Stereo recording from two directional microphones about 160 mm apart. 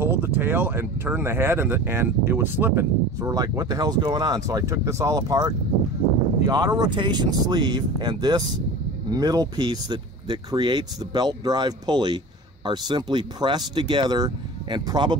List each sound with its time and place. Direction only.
0.0 s speech: 15° right (ahead or behind)